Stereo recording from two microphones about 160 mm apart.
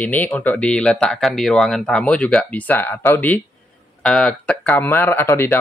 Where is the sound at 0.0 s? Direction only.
10° left (ahead or behind).